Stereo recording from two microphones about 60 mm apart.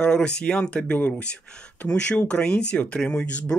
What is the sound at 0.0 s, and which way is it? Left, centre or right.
Speech, centre.